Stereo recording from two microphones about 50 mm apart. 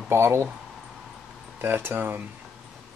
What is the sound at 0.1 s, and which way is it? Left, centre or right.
Speech, right.